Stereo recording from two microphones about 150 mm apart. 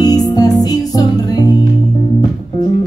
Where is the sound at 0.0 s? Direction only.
25° left (ahead or behind).